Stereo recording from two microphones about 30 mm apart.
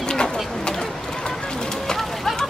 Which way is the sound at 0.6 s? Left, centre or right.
Left.